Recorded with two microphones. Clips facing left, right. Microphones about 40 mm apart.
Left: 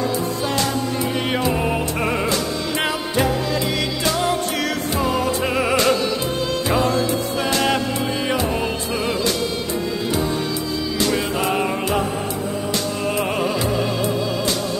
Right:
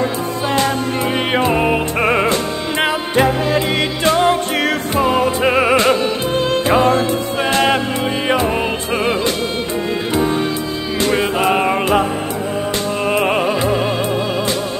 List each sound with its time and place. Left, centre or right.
0.0 s music: right
11.0 s music: right